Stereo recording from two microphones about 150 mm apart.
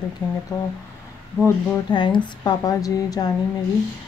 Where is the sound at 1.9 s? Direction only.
30° left (ahead or behind).